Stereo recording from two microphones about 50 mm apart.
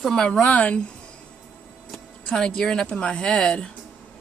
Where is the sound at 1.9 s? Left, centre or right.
Centre.